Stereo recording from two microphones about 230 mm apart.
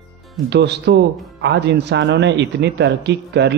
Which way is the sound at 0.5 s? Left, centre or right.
Right.